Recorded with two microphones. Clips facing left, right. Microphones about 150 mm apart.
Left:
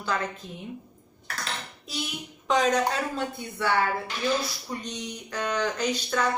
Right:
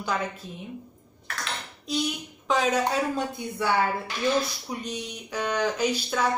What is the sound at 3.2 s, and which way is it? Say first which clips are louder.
Speech: right 2 dB; 15° right (ahead or behind).